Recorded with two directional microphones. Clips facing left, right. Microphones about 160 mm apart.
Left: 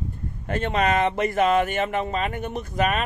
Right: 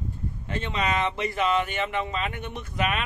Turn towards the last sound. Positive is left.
turn(degrees=40)  # may be behind; listen again after turning